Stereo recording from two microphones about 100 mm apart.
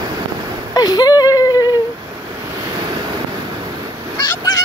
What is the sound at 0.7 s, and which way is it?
Whimper, 40° left (ahead or behind).